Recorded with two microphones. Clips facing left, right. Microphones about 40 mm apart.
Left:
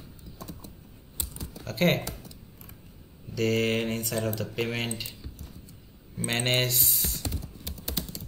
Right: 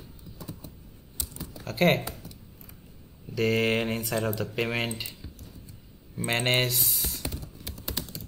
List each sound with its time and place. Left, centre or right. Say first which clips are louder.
1.2 s typing: even; left
1.6 s speech: right 2 dB; centre
3.3 s speech: right 1 dB; centre
6.1 s speech: right 1 dB; centre
7.2 s computer keyboard: even; centre